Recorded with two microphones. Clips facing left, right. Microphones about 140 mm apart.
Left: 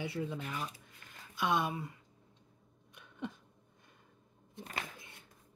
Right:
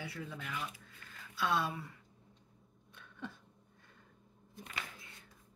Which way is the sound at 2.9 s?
15° left (ahead or behind).